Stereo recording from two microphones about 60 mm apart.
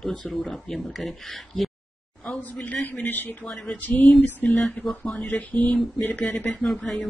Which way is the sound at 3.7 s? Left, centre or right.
Left.